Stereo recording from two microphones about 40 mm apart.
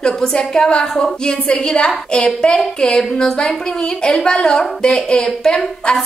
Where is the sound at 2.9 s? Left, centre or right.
Centre.